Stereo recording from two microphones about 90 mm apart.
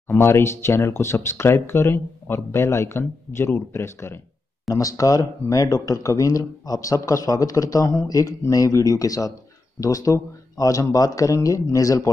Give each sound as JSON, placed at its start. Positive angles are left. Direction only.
{"t": 0.1, "sound": "speech", "side_deg": 30}
{"t": 4.7, "sound": "speech", "side_deg": 40}